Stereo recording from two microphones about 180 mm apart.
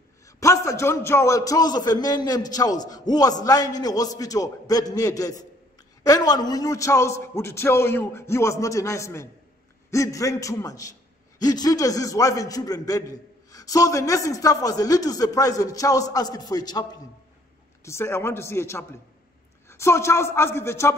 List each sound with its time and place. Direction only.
0.4 s a man's voice: 15° left (ahead or behind)
17.8 s a man's voice: 15° left (ahead or behind)